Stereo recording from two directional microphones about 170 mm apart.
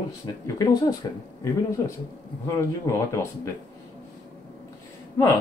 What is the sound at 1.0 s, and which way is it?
Speech, 25° left (ahead or behind).